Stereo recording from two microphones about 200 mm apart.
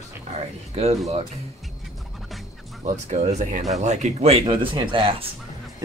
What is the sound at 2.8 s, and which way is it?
Speech, 35° right (ahead or behind).